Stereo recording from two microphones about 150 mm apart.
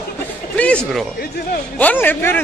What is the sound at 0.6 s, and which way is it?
A man's voice, 5° left (ahead or behind).